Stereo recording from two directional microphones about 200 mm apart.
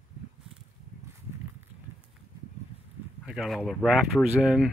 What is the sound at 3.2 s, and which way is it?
Speech, centre (ahead or behind).